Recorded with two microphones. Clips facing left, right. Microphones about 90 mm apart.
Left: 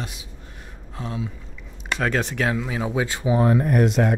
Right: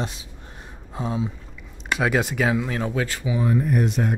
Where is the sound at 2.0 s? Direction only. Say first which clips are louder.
Right 1 dB; 5° right (ahead or behind).